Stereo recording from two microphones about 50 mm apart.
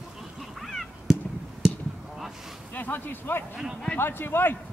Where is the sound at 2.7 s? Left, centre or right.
Left.